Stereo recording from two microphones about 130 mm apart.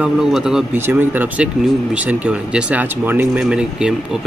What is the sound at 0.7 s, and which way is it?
Speech, 15° right (ahead or behind).